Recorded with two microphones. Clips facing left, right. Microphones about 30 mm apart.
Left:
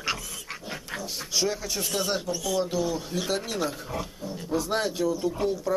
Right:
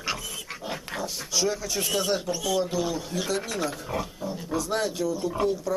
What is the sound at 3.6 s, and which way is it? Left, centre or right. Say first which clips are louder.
Speech: even; centre.